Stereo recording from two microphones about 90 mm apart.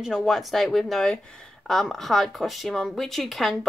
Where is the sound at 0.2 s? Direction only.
Centre (ahead or behind).